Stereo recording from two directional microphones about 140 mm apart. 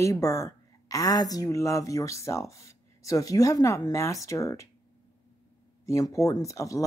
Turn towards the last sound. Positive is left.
turn(degrees=25)  # may be behind; listen again after turning